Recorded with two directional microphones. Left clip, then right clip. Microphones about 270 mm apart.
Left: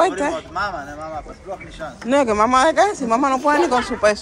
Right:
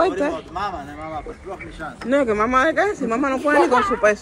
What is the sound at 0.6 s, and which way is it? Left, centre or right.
A man's voice, left.